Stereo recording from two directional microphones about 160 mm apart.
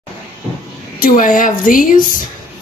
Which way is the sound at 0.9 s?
60° left (ahead or behind).